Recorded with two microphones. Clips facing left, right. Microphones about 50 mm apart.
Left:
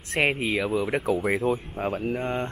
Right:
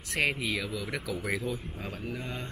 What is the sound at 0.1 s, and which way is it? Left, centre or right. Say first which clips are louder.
Speech: left 5 dB; left.